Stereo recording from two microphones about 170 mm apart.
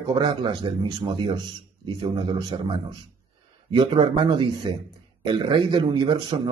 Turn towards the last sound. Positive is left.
turn(degrees=-30)  # may be behind; listen again after turning